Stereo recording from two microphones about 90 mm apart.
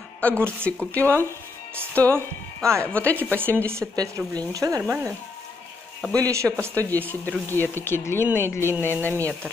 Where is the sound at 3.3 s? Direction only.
25° right (ahead or behind).